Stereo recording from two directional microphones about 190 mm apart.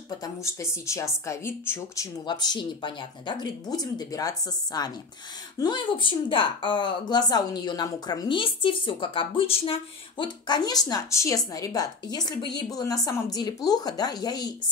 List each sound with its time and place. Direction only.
0.2 s speech: 15° left (ahead or behind)